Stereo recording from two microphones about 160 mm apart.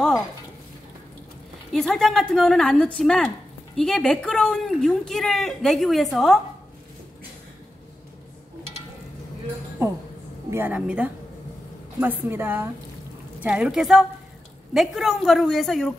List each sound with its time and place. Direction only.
1.7 s speech: 5° left (ahead or behind)
9.8 s a sound: 20° right (ahead or behind)
10.5 s a woman's voice: 10° right (ahead or behind)